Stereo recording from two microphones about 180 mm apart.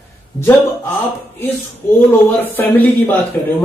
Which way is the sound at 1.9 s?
10° left (ahead or behind).